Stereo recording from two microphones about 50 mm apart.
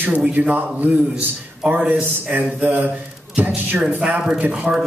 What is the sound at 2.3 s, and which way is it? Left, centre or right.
A man's voice, right.